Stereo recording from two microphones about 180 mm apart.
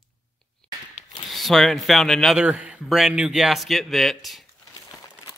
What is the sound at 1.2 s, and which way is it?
Speech, centre (ahead or behind).